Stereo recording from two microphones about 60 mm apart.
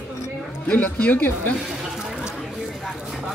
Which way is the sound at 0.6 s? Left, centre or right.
Left.